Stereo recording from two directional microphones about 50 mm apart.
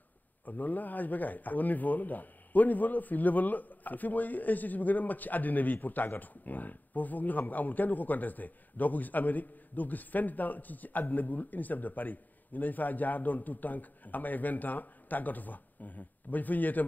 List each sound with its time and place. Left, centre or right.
0.5 s speech: left